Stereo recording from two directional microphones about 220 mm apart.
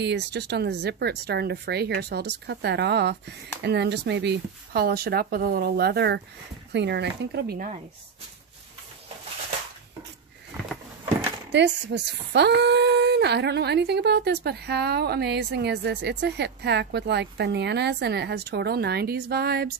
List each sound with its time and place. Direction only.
0.0 s speech: 50° right (ahead or behind)
11.5 s speech: 55° right (ahead or behind)